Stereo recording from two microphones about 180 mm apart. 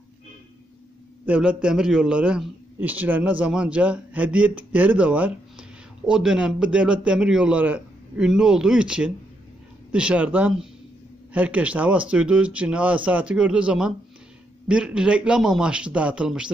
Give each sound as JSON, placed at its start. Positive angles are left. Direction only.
{"t": 1.2, "sound": "a man's voice", "side_deg": -5}